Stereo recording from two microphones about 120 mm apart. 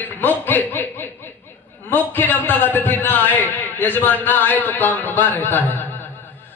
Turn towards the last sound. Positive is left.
turn(degrees=15)  # may be behind; listen again after turning